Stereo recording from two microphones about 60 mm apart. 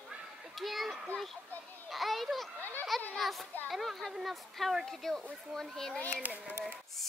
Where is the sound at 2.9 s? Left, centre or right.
Centre.